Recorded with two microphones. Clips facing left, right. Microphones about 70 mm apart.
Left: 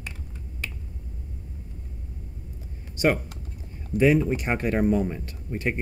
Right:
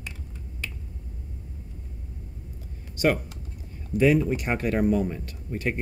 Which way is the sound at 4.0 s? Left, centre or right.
Left.